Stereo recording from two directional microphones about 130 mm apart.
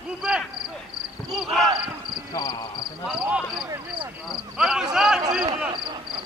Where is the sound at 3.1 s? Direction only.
5° right (ahead or behind).